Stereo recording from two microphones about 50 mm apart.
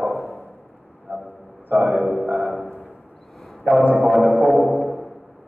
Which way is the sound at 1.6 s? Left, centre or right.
Right.